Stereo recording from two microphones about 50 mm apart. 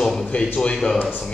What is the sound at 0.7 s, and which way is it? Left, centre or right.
Speech, centre.